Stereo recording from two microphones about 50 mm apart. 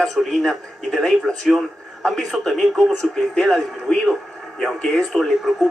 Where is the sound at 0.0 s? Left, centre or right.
Centre.